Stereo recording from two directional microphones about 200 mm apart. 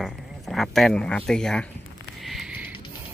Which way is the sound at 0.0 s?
Centre (ahead or behind).